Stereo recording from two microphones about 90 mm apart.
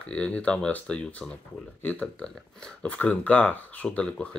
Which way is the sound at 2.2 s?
10° left (ahead or behind).